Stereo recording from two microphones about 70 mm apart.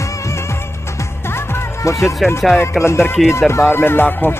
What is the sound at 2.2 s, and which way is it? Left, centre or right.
Speech, centre.